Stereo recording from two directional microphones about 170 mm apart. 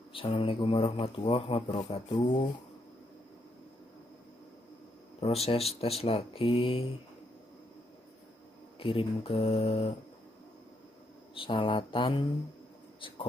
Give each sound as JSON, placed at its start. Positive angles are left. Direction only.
{"t": 0.1, "sound": "speech", "side_deg": 30}
{"t": 5.2, "sound": "speech", "side_deg": 35}
{"t": 8.7, "sound": "speech", "side_deg": 30}
{"t": 11.3, "sound": "speech", "side_deg": 30}